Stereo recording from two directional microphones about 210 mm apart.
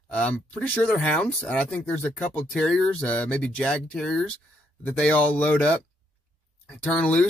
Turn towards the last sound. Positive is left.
turn(degrees=5)  # may be behind; listen again after turning